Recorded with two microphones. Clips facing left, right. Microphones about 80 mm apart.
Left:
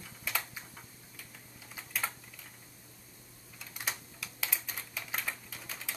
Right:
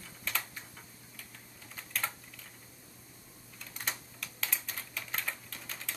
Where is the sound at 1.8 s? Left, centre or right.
Centre.